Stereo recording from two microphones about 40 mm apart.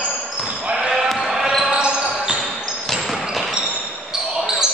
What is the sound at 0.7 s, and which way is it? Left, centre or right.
Basketball bounce, centre.